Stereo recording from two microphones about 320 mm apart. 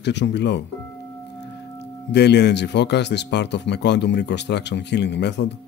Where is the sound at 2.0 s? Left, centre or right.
Left.